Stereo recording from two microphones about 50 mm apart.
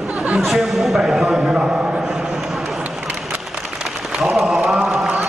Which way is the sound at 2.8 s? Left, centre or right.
Right.